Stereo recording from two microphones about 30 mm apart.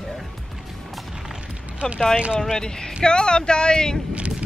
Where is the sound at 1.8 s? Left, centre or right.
Left.